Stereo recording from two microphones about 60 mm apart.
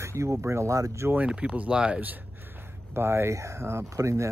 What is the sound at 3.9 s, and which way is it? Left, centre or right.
Speech, right.